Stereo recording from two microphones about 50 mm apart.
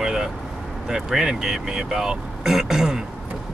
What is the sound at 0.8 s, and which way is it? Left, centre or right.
Speech, centre.